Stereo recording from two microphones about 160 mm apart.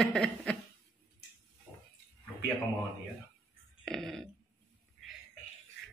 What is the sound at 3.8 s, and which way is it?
Speech, 5° left (ahead or behind).